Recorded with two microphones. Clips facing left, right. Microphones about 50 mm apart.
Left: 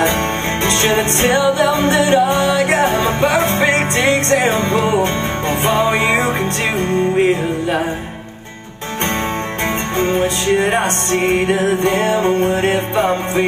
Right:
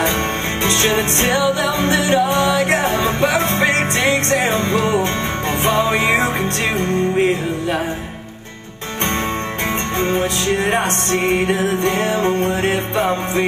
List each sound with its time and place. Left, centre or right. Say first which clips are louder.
0.9 s music: left 3 dB; centre
9.9 s music: left 3 dB; centre